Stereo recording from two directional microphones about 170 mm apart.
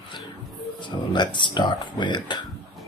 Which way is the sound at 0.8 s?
25° left (ahead or behind).